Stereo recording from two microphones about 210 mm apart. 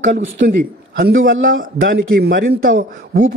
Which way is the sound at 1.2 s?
65° right (ahead or behind).